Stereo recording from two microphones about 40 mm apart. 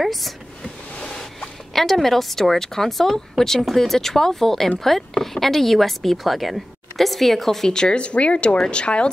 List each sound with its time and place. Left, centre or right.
0.0 s speech: centre
1.7 s speech: centre
7.7 s speech: left